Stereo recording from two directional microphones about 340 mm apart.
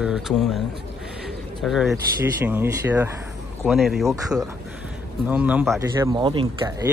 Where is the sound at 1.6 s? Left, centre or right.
Centre.